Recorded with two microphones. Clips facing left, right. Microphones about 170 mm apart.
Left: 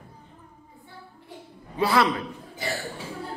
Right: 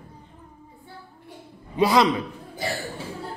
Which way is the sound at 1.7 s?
15° right (ahead or behind).